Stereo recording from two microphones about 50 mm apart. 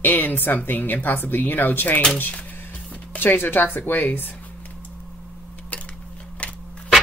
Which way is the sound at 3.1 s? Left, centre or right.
Left.